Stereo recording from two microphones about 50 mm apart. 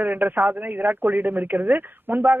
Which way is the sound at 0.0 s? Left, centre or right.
Right.